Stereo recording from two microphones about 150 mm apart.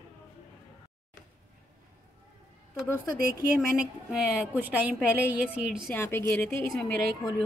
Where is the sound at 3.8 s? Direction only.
5° right (ahead or behind).